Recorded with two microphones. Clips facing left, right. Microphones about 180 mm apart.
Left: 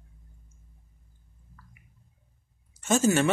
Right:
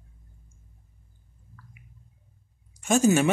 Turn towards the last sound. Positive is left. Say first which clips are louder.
# right 2 dB
turn(degrees=-15)  # may be behind; listen again after turning